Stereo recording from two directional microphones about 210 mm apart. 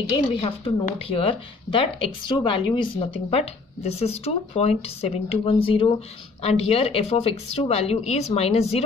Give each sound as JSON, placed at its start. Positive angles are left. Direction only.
{"t": 0.4, "sound": "speech", "side_deg": 25}